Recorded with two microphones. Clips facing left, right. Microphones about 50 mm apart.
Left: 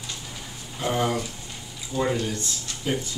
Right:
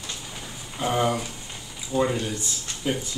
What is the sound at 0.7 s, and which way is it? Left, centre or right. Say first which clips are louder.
Speech: right 1 dB; centre.